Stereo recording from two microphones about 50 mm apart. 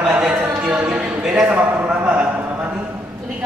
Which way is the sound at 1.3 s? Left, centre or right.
Right.